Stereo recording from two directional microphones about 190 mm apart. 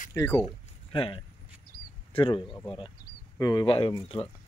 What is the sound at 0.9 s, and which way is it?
Speech, 30° left (ahead or behind).